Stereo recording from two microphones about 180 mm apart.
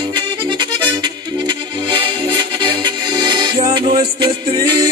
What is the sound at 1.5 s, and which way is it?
Music, 25° right (ahead or behind).